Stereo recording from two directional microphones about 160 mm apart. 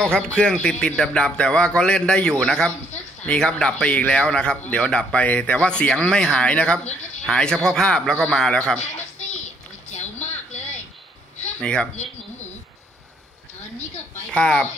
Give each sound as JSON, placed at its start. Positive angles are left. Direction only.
{"t": 0.0, "sound": "a man's voice", "side_deg": 5}
{"t": 9.8, "sound": "a sound", "side_deg": 45}
{"t": 11.6, "sound": "a man's voice", "side_deg": 5}
{"t": 14.3, "sound": "a man's voice", "side_deg": 5}